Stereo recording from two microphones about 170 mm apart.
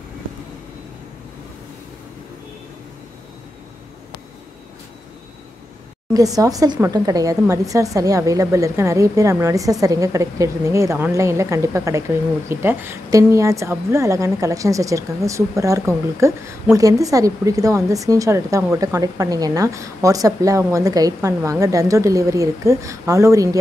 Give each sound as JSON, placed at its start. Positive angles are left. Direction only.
{"t": 6.1, "sound": "a woman's voice", "side_deg": -20}